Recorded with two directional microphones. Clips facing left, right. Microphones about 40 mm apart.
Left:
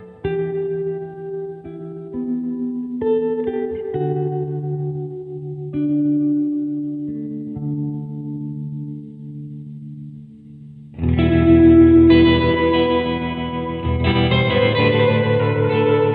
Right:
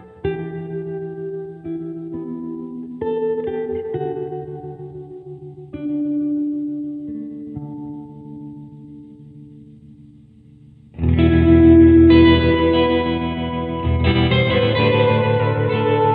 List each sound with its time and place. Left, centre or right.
0.2 s music: centre
11.0 s music: centre